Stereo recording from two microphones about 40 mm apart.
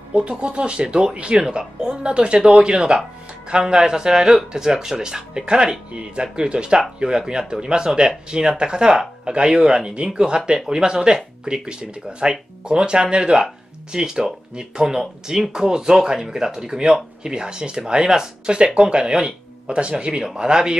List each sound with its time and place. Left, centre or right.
0.1 s speech: right